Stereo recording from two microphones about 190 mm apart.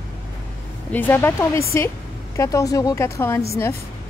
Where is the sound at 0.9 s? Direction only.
10° left (ahead or behind).